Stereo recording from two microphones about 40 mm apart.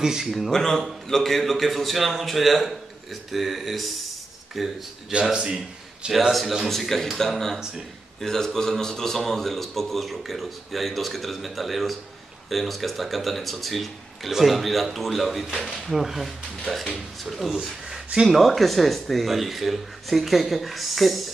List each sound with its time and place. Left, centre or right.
0.0 s speech: centre
0.5 s a man's voice: centre
5.3 s a man's voice: right
6.1 s a man's voice: centre
6.7 s a man's voice: centre